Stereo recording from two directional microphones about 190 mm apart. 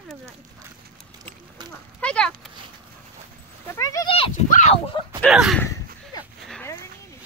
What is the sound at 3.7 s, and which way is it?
Speech, 20° left (ahead or behind).